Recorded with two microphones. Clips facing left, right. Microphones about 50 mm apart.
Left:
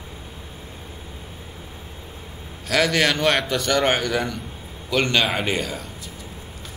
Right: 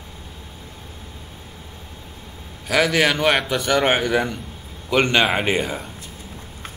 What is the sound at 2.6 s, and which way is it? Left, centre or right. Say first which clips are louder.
A man's voice: right 2 dB; centre.